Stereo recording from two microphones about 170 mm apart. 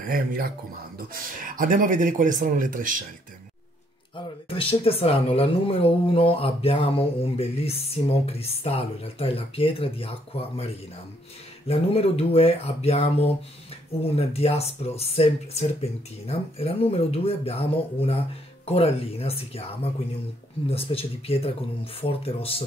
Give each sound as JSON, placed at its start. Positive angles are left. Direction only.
{"t": 0.0, "sound": "speech", "side_deg": -60}
{"t": 4.5, "sound": "speech", "side_deg": 35}